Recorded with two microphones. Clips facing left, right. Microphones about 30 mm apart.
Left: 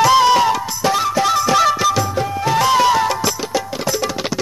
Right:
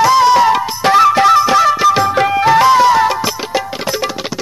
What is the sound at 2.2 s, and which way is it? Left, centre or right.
Music, right.